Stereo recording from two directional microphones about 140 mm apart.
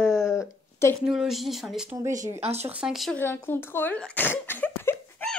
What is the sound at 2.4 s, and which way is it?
Speech, 50° right (ahead or behind).